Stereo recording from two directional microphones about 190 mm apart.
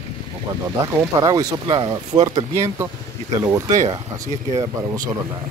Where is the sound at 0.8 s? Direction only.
15° right (ahead or behind).